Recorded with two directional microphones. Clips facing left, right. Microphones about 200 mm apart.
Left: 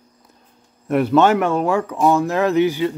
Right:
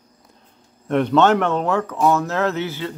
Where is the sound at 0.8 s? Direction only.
5° left (ahead or behind).